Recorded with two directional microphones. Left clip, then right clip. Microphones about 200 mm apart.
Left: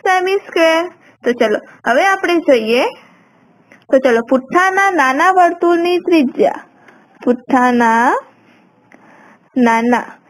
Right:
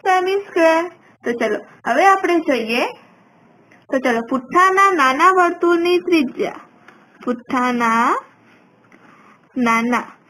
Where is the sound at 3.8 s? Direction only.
60° left (ahead or behind).